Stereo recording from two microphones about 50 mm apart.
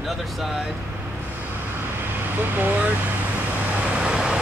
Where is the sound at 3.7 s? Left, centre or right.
Right.